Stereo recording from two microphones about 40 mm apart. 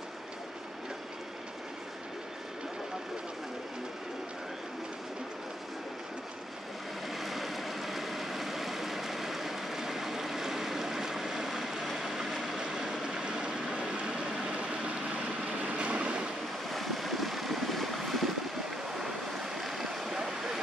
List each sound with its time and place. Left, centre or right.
7.1 s vehicle: centre; by 14.7 s right
15.7 s vehicle: right
16.7 s vehicle: centre
18.9 s waves: centre
20.2 s vehicle: centre